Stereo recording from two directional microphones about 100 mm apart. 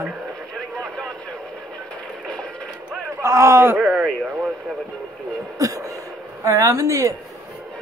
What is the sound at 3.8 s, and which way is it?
Speech, 5° right (ahead or behind).